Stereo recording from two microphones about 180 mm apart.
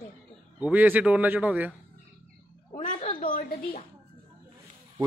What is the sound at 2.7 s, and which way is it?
A woman's voice, 45° left (ahead or behind).